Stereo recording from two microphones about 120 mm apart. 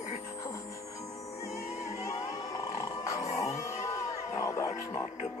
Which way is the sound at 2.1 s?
30° left (ahead or behind).